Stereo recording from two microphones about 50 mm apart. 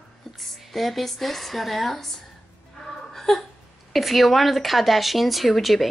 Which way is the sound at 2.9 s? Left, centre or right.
Centre.